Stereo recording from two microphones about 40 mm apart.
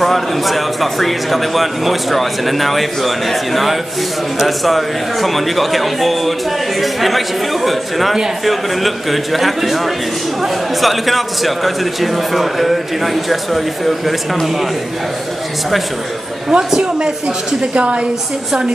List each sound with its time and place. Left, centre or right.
0.0 s a man's voice: centre
16.4 s a woman's voice: centre
17.6 s a woman's voice: right